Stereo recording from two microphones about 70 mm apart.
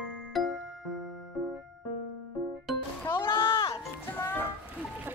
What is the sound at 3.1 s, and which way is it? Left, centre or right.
Music, left.